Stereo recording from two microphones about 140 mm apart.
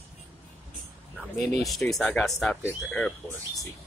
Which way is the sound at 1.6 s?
Centre (ahead or behind).